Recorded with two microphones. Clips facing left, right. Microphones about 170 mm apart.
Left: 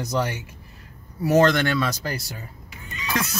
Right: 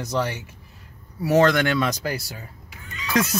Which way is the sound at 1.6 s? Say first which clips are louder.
Right 1 dB; 15° right (ahead or behind).